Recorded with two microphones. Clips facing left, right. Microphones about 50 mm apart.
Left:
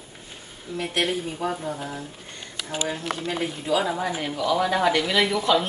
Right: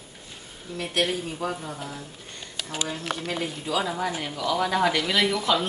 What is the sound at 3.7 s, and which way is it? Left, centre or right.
A woman's voice, centre.